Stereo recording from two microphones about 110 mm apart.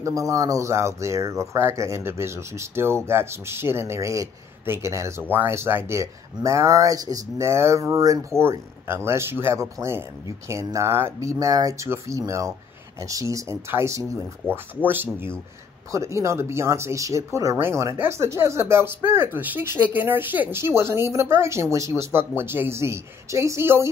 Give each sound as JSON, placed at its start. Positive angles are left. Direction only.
{"t": 0.0, "sound": "speech", "side_deg": -30}